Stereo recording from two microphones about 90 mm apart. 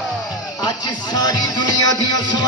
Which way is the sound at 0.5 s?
45° left (ahead or behind).